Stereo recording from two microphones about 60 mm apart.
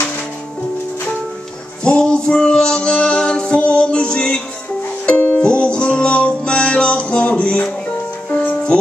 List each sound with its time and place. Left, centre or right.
1.8 s music: centre
5.0 s music: left
5.4 s music: centre